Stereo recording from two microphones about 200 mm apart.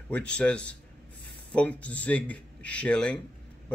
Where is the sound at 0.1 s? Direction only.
5° left (ahead or behind).